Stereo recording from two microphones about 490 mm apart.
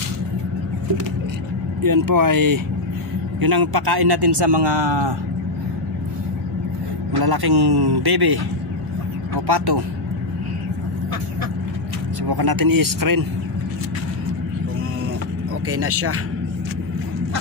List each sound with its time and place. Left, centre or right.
1.8 s a man's voice: right
7.1 s a man's voice: right
9.5 s a man's voice: right
12.3 s a man's voice: right
15.7 s speech: right